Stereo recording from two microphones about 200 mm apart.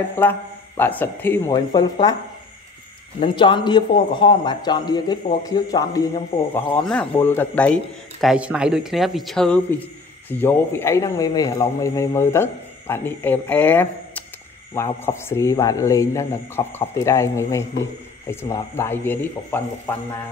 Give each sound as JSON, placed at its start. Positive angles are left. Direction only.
{"t": 0.2, "sound": "speech", "side_deg": 10}
{"t": 3.2, "sound": "a man's voice", "side_deg": 25}
{"t": 6.5, "sound": "speech", "side_deg": 10}